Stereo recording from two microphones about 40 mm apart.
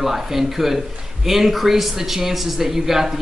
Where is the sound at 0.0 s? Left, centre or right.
Centre.